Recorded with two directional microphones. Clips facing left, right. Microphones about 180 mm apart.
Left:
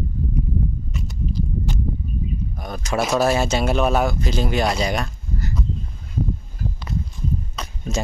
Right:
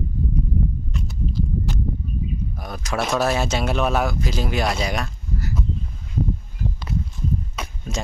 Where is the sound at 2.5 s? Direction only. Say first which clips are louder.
Left 3 dB; centre (ahead or behind).